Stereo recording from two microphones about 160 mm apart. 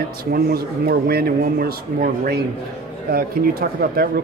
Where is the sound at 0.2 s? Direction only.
70° right (ahead or behind).